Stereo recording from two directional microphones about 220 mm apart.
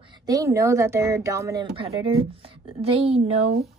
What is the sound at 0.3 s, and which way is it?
A woman's voice, 15° right (ahead or behind).